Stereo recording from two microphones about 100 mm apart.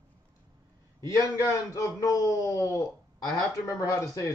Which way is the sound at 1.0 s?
30° left (ahead or behind).